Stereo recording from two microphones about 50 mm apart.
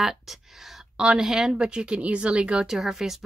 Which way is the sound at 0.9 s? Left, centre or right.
Centre.